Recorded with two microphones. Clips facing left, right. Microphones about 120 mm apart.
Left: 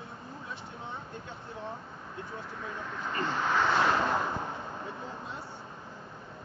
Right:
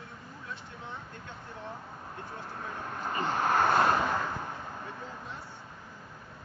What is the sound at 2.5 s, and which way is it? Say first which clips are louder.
Vehicle: right 1 dB; 45° right (ahead or behind).